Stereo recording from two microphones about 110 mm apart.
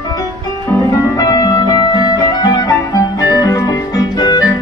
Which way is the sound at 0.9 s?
35° left (ahead or behind).